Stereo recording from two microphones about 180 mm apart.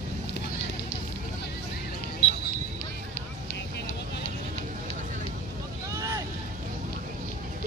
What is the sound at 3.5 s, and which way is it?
Vehicle, 70° left (ahead or behind).